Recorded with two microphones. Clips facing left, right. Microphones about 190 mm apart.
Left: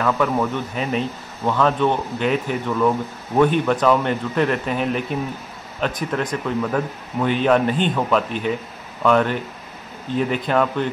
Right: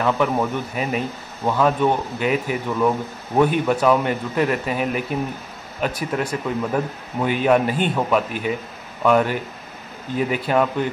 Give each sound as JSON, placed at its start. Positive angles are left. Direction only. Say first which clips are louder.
{"t": 0.0, "sound": "speech", "louder": "even", "side_deg": -15}